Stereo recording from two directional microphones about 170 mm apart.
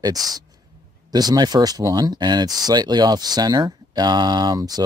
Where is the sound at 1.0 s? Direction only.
25° right (ahead or behind).